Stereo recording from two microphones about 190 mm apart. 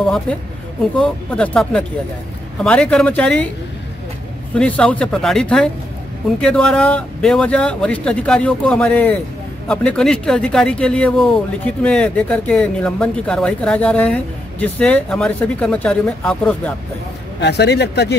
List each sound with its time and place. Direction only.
0.0 s speech: centre (ahead or behind)
4.6 s speech: 5° left (ahead or behind)
17.4 s speech: 65° left (ahead or behind)